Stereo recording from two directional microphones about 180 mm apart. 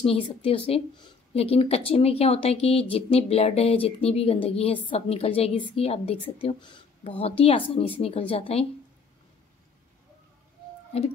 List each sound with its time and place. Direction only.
0.0 s speech: 30° left (ahead or behind)